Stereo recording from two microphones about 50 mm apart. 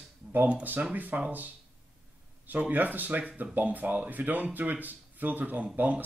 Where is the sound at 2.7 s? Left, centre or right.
Right.